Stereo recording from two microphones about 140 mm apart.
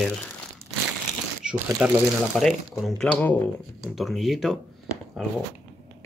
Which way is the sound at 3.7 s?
Centre (ahead or behind).